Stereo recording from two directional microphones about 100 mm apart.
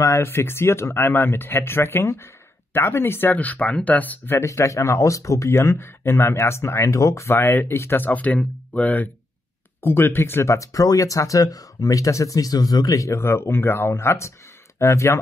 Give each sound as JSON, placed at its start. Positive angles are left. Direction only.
{"t": 0.0, "sound": "speech", "side_deg": 30}